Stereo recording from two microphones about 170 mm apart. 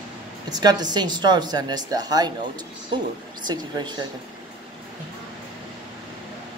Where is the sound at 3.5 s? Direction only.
25° right (ahead or behind).